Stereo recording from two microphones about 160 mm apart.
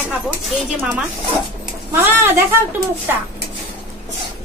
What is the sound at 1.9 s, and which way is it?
Speech, 10° right (ahead or behind).